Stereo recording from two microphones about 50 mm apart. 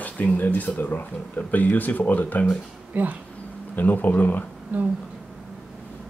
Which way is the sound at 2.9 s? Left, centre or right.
Right.